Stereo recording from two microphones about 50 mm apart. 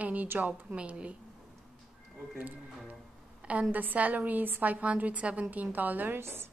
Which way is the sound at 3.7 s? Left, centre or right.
Right.